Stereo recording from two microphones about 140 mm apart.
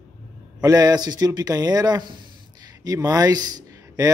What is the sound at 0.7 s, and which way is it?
A man's voice, 25° right (ahead or behind).